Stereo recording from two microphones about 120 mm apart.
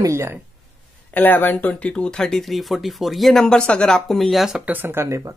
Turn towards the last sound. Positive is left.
turn(degrees=-25)  # may be behind; listen again after turning